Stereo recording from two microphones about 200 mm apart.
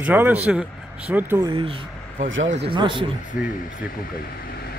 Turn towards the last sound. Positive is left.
turn(degrees=50)  # may be behind; listen again after turning